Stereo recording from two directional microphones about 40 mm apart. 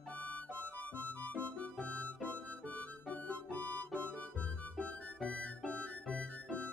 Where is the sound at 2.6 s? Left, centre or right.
Left.